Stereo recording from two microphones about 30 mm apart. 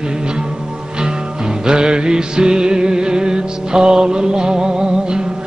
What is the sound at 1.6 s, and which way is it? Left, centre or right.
Music, right.